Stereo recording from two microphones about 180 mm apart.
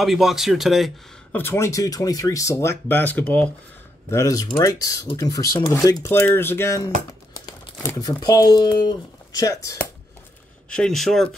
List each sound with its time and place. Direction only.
0.0 s speech: centre (ahead or behind)
1.3 s speech: 15° left (ahead or behind)
10.7 s speech: 5° left (ahead or behind)